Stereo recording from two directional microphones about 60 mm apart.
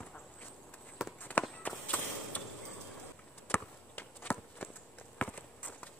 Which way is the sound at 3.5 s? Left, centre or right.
Left.